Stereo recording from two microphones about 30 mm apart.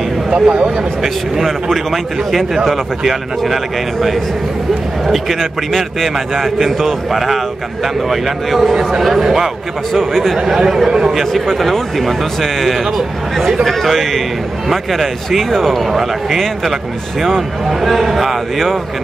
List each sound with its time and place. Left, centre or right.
0.3 s speech: right
1.0 s a man's voice: centre
1.7 s a man's voice: centre
5.0 s a man's voice: centre
9.9 s speech: centre
10.4 s a man's voice: centre
11.1 s a man's voice: centre
17.8 s a man's voice: centre